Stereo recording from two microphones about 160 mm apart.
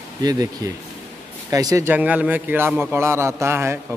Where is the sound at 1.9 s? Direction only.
10° right (ahead or behind).